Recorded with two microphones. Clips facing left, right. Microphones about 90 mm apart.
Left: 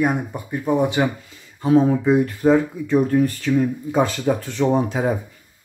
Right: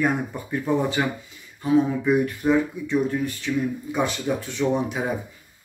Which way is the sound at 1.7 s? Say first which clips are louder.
Left 4 dB; 50° left (ahead or behind).